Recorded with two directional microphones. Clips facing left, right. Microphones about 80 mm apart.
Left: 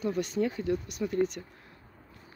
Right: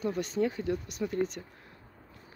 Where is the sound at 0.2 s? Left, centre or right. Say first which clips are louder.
Left 2 dB; right.